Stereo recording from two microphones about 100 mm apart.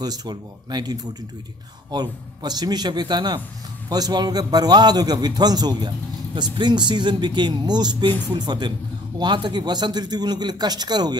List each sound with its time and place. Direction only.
0.0 s a man's voice: 40° right (ahead or behind)